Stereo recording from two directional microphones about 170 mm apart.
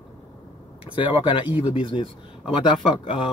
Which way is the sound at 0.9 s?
30° left (ahead or behind).